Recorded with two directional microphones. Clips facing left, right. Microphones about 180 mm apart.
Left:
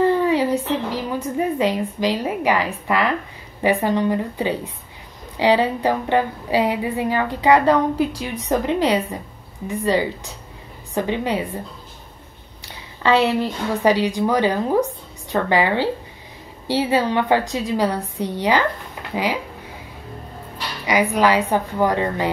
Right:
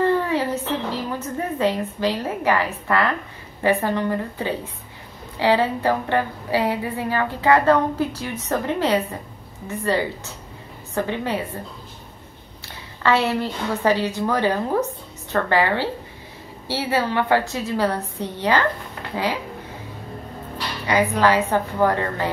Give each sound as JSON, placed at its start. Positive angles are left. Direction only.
{"t": 0.0, "sound": "a woman's voice", "side_deg": 15}
{"t": 12.6, "sound": "a woman's voice", "side_deg": 15}
{"t": 20.8, "sound": "a woman's voice", "side_deg": 15}